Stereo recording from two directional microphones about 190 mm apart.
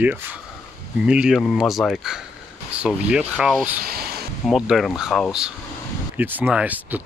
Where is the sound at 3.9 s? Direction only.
55° right (ahead or behind).